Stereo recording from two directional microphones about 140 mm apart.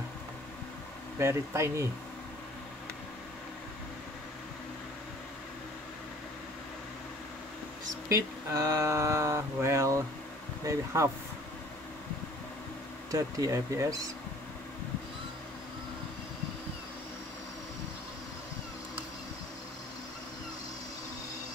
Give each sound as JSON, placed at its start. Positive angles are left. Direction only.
{"t": 1.2, "sound": "speech", "side_deg": -20}
{"t": 7.8, "sound": "speech", "side_deg": -25}
{"t": 13.1, "sound": "speech", "side_deg": -25}